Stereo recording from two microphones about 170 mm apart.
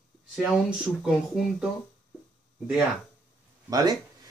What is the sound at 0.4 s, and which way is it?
Speech, centre (ahead or behind).